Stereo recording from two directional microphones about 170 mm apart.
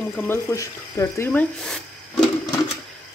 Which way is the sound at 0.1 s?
15° left (ahead or behind).